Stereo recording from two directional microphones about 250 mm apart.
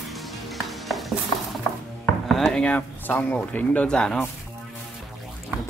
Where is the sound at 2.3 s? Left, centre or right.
Centre.